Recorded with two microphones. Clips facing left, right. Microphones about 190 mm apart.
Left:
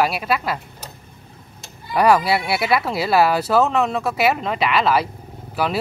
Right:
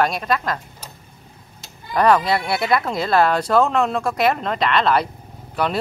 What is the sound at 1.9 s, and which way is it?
Speech, 10° left (ahead or behind).